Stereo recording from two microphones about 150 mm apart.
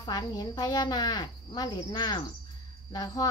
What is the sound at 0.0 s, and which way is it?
Speech, 25° left (ahead or behind).